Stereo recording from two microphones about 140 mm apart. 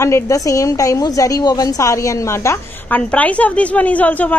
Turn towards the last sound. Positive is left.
turn(degrees=10)  # may be behind; listen again after turning